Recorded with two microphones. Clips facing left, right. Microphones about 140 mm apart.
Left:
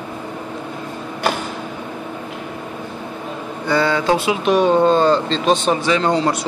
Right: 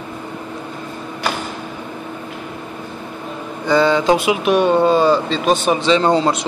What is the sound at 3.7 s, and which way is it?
Speech, 20° right (ahead or behind).